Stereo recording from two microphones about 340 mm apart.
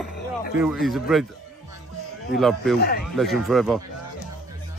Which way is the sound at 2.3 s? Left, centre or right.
Centre.